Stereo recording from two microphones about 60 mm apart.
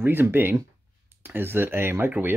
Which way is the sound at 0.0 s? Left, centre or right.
Right.